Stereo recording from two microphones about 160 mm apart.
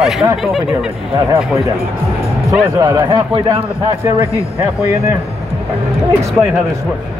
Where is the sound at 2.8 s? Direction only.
25° right (ahead or behind).